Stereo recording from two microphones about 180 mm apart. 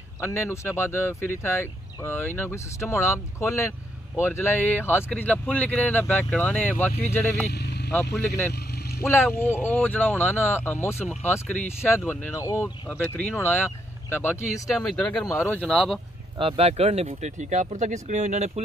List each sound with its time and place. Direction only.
0.2 s speech: 15° left (ahead or behind)
7.5 s vehicle: 65° left (ahead or behind)
9.0 s speech: 10° left (ahead or behind)
14.7 s speech: centre (ahead or behind)
15.2 s speech: 15° left (ahead or behind)
16.3 s speech: 35° right (ahead or behind)